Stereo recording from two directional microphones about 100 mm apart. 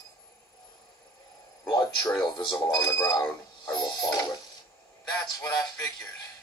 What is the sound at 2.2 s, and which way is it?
Speech, 40° left (ahead or behind).